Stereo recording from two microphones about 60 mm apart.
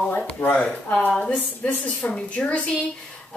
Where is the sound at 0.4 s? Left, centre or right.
Left.